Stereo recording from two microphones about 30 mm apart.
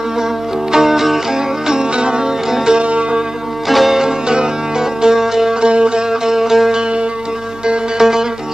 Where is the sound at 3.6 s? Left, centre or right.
Centre.